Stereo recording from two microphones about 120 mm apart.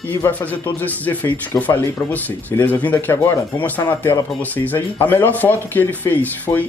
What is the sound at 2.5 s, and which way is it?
Speech, 15° left (ahead or behind).